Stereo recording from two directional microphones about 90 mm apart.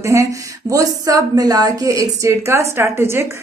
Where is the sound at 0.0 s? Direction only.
35° right (ahead or behind).